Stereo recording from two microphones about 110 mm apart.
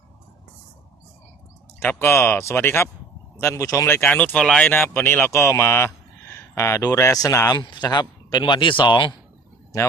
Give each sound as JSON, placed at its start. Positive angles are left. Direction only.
{"t": 1.8, "sound": "speech", "side_deg": 20}
{"t": 7.5, "sound": "speech", "side_deg": 45}